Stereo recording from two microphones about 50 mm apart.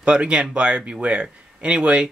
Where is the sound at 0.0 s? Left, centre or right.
Right.